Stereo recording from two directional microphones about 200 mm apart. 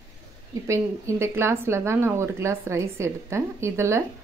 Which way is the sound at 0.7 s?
15° right (ahead or behind).